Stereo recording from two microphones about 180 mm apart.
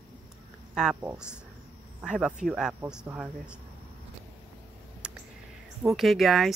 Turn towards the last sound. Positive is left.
turn(degrees=0)  # may be behind; listen again after turning